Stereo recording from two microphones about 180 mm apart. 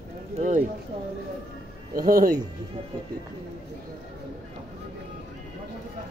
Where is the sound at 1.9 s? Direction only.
50° right (ahead or behind).